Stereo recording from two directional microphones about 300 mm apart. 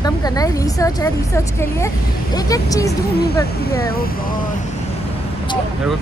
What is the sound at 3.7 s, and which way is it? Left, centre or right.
Speech, left.